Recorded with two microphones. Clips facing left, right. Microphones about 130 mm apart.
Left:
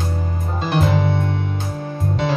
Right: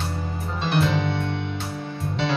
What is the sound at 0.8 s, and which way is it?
Music, 45° left (ahead or behind).